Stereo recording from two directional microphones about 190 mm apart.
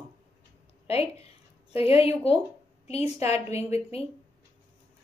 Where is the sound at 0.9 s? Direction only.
30° left (ahead or behind).